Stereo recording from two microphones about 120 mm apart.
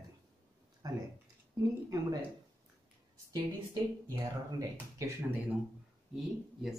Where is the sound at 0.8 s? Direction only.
30° right (ahead or behind).